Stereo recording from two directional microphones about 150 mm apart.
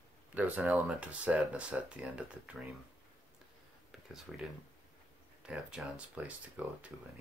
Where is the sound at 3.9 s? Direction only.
5° right (ahead or behind).